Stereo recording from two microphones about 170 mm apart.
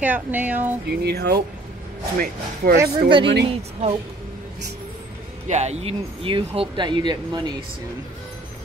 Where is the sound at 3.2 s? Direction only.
90° right.